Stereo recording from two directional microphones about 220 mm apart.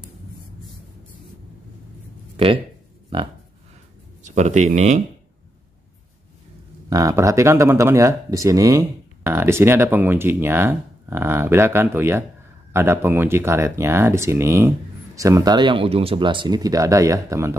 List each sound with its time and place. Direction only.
2.3 s speech: 25° right (ahead or behind)
6.9 s speech: 15° right (ahead or behind)